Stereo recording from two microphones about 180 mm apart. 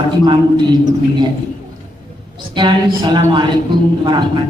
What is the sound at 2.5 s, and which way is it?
Speech, 25° right (ahead or behind).